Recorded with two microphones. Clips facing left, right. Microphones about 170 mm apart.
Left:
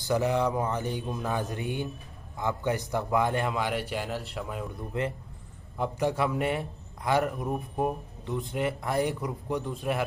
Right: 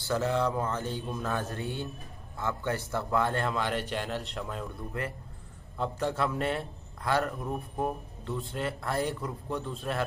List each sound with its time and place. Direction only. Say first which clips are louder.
0.0 s a man's voice: left 2 dB; 15° left (ahead or behind)
4.9 s a man's voice: left 6 dB; 20° left (ahead or behind)